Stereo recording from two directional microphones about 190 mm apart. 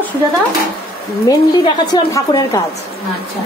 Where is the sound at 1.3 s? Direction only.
20° left (ahead or behind).